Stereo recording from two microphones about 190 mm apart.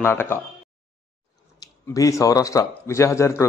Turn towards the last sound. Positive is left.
turn(degrees=15)  # may be behind; listen again after turning